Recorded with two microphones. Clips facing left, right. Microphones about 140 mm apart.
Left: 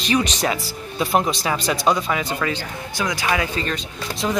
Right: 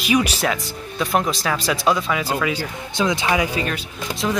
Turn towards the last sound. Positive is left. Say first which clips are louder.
# even
turn(degrees=5)  # may be behind; listen again after turning